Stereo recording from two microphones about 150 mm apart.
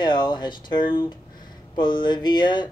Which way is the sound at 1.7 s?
30° left (ahead or behind).